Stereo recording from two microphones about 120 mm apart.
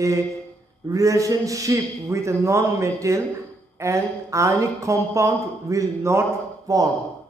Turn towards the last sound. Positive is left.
turn(degrees=-30)  # may be behind; listen again after turning